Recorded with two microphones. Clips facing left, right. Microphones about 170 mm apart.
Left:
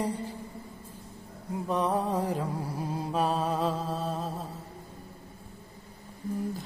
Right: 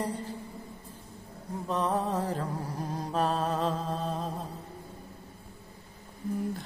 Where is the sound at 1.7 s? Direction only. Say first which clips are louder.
Left 1 dB; 10° left (ahead or behind).